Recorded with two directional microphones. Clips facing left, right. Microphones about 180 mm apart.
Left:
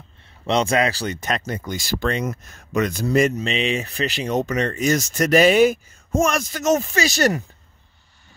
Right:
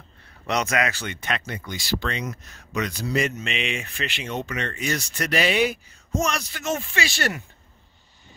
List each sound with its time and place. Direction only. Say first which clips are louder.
0.5 s speech: left 5 dB; 30° left (ahead or behind); by 3.3 s 45° left (ahead or behind)
3.3 s speech: left 7 dB; 35° left (ahead or behind)